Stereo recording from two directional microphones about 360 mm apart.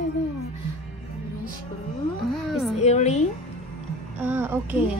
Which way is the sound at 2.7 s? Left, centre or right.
Centre.